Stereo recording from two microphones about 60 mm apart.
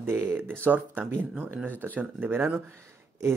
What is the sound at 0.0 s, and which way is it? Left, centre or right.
Speech, right.